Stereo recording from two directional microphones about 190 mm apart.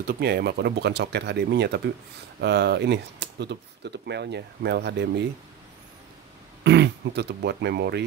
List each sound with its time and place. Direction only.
0.0 s speech: 55° right (ahead or behind)
6.6 s speech: 65° right (ahead or behind)